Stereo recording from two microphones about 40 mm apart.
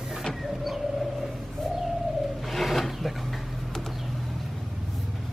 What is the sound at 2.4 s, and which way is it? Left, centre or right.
Filing, centre.